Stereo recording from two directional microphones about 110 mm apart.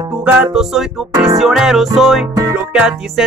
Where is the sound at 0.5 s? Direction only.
5° right (ahead or behind).